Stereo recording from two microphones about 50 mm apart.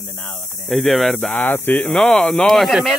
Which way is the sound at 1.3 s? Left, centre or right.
Left.